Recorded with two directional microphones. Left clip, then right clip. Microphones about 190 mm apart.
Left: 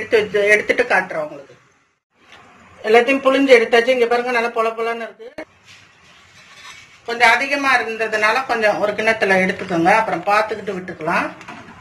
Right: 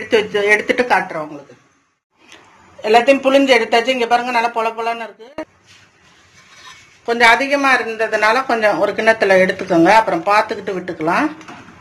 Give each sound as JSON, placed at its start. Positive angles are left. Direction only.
{"t": 0.1, "sound": "speech", "side_deg": -65}
{"t": 2.8, "sound": "speech", "side_deg": -60}
{"t": 7.1, "sound": "speech", "side_deg": -60}